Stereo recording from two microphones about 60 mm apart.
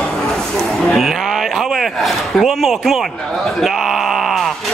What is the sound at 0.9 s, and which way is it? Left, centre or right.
Speech, centre.